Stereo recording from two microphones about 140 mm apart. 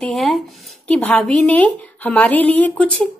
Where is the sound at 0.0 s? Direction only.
Centre (ahead or behind).